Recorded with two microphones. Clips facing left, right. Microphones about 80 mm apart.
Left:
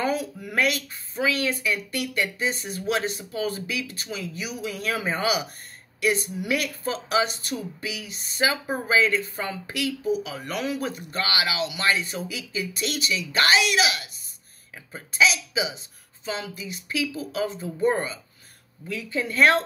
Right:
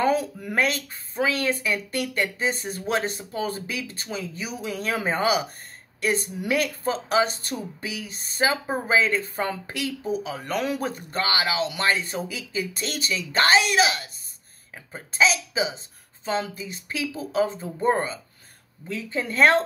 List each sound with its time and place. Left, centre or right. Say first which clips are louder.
0.0 s speech: right 4 dB; right